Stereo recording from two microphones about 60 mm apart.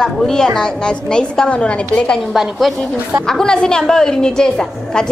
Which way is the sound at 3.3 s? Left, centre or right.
Centre.